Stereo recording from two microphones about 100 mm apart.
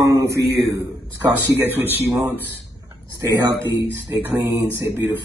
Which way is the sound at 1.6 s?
20° right (ahead or behind).